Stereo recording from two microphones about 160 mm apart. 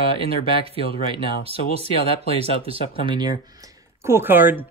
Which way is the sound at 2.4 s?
35° right (ahead or behind).